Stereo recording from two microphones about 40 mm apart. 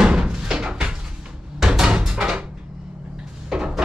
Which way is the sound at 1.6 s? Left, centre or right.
Centre.